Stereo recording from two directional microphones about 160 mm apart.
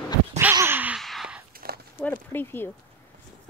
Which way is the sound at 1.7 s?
70° right (ahead or behind).